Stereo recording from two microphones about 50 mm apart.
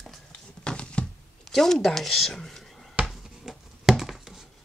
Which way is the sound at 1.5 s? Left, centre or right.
Centre.